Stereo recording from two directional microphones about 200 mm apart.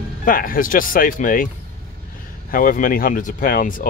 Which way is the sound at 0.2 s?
45° left (ahead or behind).